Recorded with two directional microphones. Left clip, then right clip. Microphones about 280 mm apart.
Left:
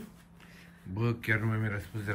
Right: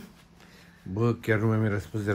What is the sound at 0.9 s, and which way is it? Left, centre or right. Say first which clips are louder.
Speech: right 5 dB; centre.